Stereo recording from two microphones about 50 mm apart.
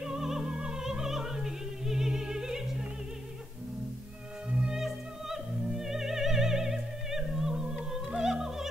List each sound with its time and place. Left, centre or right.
0.0 s opera: centre
4.5 s music: right
4.7 s opera: centre